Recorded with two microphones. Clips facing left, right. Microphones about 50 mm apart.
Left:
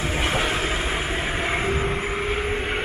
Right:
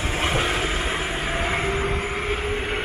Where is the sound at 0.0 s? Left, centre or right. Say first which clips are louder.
Even; centre.